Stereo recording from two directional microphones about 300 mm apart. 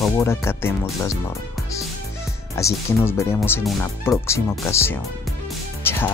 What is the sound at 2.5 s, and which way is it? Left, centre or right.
Speech, centre.